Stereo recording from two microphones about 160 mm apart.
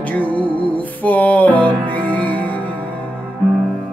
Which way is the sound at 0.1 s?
10° left (ahead or behind).